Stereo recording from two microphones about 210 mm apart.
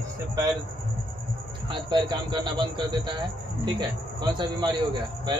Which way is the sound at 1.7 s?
20° right (ahead or behind).